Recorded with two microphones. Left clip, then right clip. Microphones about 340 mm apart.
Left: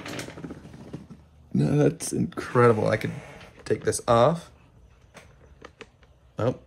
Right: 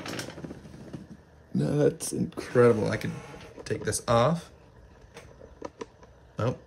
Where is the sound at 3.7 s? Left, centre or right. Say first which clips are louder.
Left 5 dB; centre.